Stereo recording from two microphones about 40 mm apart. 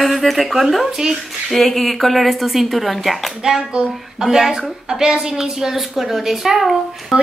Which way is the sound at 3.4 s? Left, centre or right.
Right.